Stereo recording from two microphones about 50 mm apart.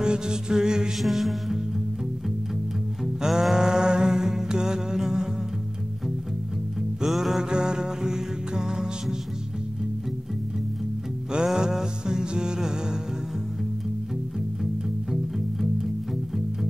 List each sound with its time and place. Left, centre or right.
0.0 s music: centre
0.9 s music: centre
3.0 s music: centre
7.0 s music: centre
7.4 s music: centre
11.3 s music: centre
14.6 s music: centre